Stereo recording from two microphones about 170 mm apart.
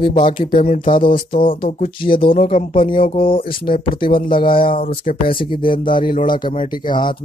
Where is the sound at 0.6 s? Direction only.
45° left (ahead or behind).